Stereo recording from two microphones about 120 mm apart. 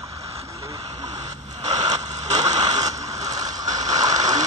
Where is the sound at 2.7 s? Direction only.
30° right (ahead or behind).